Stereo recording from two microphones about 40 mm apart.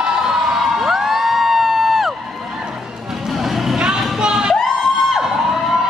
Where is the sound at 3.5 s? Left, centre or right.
Centre.